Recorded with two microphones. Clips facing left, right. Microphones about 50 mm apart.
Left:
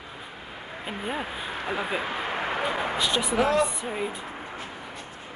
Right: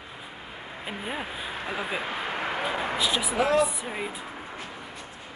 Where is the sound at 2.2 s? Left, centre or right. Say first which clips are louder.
Left 1 dB; left.